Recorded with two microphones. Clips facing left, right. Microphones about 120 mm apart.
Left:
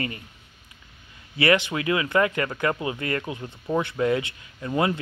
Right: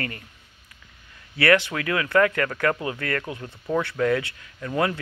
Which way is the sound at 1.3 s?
20° left (ahead or behind).